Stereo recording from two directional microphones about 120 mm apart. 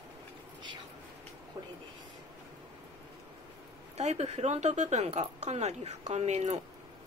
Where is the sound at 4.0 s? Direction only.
70° right (ahead or behind).